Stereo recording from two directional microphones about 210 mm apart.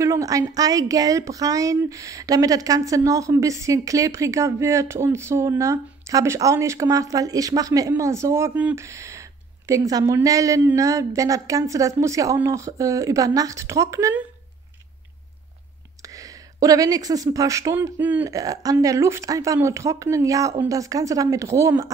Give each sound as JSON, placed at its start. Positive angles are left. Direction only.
{"t": 0.0, "sound": "a woman's voice", "side_deg": -15}
{"t": 16.0, "sound": "a woman's voice", "side_deg": -15}